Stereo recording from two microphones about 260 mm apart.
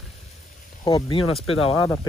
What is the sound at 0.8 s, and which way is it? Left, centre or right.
Speech, centre.